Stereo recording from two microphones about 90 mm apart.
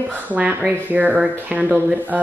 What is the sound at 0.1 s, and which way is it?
Speech, 15° right (ahead or behind).